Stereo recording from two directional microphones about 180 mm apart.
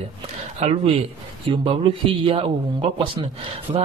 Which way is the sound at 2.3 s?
30° right (ahead or behind).